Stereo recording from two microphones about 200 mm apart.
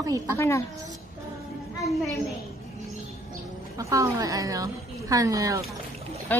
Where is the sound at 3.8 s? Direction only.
15° right (ahead or behind).